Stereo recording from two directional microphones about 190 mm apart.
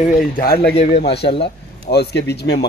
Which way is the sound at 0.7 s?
35° left (ahead or behind).